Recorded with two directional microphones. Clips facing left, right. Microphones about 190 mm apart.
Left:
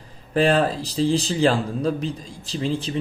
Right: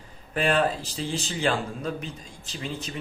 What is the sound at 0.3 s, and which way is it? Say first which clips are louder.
Speech: left 5 dB; 35° left (ahead or behind).